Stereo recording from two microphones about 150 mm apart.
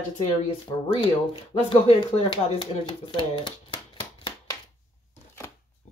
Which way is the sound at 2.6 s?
30° left (ahead or behind).